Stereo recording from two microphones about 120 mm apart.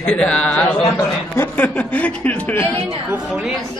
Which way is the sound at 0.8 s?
20° left (ahead or behind).